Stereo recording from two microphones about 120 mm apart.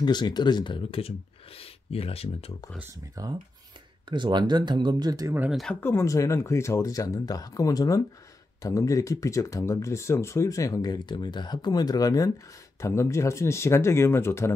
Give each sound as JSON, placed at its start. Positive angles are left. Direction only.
{"t": 0.0, "sound": "speech", "side_deg": 35}
{"t": 3.2, "sound": "speech", "side_deg": -30}
{"t": 4.1, "sound": "speech", "side_deg": -40}
{"t": 5.5, "sound": "speech", "side_deg": 0}
{"t": 5.8, "sound": "speech", "side_deg": 20}